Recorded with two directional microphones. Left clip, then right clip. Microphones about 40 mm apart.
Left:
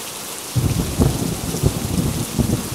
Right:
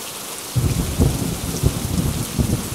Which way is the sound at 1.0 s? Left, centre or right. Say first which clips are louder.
Left 2 dB; left.